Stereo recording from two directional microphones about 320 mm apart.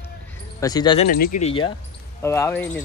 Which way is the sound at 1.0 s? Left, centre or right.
Left.